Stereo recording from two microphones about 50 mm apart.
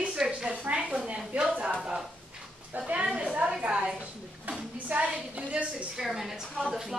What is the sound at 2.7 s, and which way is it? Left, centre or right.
Speech, right.